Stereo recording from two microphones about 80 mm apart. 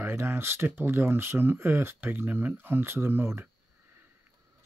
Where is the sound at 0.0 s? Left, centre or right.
Right.